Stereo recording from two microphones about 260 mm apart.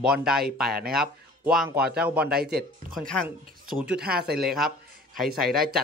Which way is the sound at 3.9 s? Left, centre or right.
Right.